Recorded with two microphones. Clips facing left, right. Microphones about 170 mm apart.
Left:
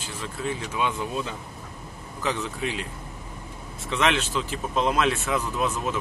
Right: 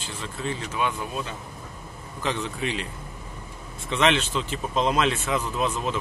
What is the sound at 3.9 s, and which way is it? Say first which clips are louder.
Speech: right 2 dB; centre (ahead or behind).